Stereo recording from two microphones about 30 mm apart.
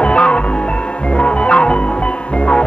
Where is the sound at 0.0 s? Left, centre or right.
Left.